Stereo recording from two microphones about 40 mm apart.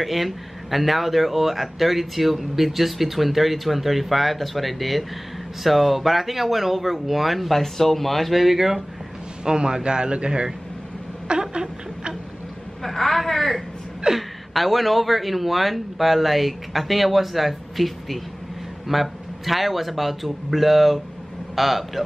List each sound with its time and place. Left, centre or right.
0.0 s speech: centre
9.4 s a sound: right
12.8 s speech: centre